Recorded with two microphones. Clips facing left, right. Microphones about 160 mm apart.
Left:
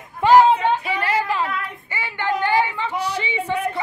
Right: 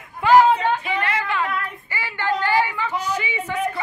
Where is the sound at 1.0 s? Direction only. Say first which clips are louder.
Left 2 dB; 35° left (ahead or behind).